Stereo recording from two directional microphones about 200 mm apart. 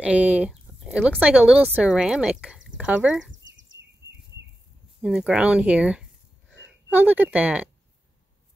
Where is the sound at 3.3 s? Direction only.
65° right (ahead or behind).